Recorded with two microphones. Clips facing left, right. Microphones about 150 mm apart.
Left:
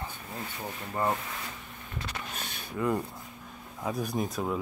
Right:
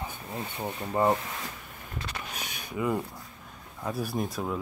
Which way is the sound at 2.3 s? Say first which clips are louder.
Right 1 dB; 5° right (ahead or behind).